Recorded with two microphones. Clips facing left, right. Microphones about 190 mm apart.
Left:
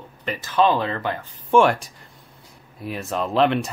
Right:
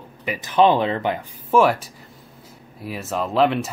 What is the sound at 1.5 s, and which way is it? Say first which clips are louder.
Speech: even; 5° right (ahead or behind).